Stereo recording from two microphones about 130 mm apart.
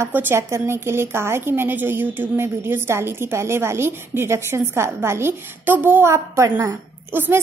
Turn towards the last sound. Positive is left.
turn(degrees=-15)  # may be behind; listen again after turning